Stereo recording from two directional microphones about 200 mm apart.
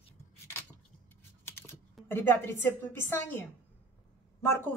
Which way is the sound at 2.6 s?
10° left (ahead or behind).